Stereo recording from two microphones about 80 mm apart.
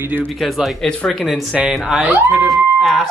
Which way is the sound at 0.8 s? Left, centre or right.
Centre.